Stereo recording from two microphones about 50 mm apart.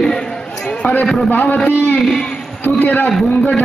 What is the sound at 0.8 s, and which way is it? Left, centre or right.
Speech, left.